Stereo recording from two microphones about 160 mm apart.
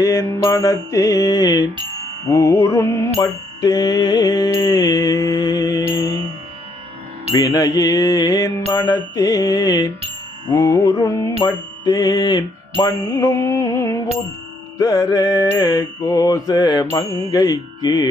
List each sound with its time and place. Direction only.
0.0 s mantra: 20° left (ahead or behind)
2.2 s music: 20° left (ahead or behind)
3.2 s mantra: 20° left (ahead or behind)
7.3 s mantra: 20° left (ahead or behind)